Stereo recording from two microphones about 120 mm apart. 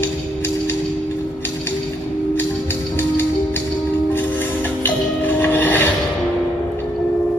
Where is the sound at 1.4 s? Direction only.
20° left (ahead or behind).